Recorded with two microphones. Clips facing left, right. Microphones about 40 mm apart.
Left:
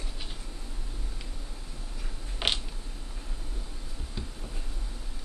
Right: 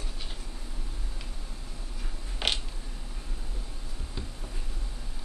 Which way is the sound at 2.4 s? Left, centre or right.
Centre.